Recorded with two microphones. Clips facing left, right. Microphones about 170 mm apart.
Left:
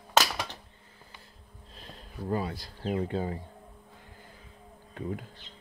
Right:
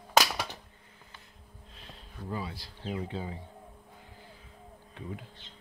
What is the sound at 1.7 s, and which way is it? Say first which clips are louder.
Speech: left 5 dB; 40° left (ahead or behind).